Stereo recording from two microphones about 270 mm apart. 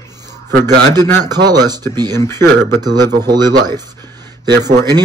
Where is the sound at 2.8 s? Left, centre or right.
Centre.